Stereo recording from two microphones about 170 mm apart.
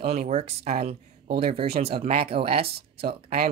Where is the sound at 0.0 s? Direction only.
40° right (ahead or behind).